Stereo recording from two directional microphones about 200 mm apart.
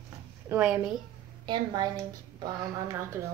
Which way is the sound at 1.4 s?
20° right (ahead or behind).